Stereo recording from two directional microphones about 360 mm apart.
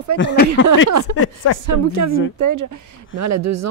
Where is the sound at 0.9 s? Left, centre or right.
Right.